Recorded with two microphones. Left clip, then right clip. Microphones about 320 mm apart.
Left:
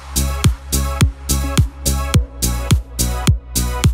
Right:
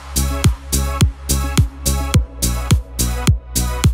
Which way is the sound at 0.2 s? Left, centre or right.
Centre.